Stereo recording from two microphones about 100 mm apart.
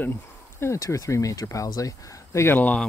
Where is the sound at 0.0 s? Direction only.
25° left (ahead or behind).